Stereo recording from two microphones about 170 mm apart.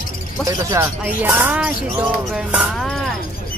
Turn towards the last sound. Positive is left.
turn(degrees=0)  # may be behind; listen again after turning